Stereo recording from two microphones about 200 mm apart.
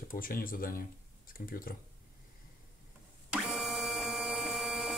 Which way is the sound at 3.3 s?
Centre (ahead or behind).